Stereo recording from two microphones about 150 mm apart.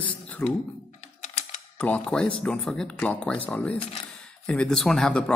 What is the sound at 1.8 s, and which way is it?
Speech, 5° left (ahead or behind).